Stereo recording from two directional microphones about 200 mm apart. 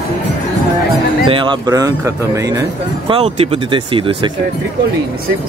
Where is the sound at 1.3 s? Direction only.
25° right (ahead or behind).